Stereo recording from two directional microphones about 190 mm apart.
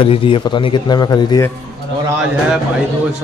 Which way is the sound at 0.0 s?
30° left (ahead or behind).